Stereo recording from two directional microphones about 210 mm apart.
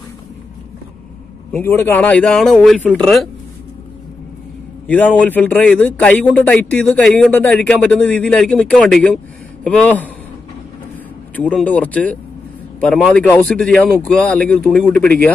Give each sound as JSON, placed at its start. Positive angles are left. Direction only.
{"t": 1.5, "sound": "a man's voice", "side_deg": 10}
{"t": 4.8, "sound": "speech", "side_deg": 10}
{"t": 11.3, "sound": "a man's voice", "side_deg": 5}